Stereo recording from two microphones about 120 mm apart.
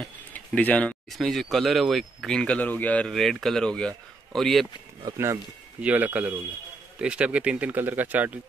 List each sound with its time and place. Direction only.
0.3 s speech: 15° left (ahead or behind)
5.0 s speech: 25° right (ahead or behind)
5.8 s speech: 10° right (ahead or behind)